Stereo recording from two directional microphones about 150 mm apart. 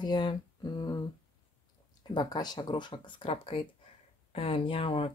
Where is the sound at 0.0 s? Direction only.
30° left (ahead or behind).